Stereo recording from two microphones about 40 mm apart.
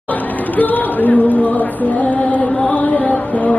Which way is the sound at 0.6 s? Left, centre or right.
Left.